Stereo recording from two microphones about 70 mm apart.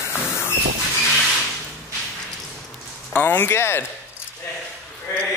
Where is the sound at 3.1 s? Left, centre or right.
Left.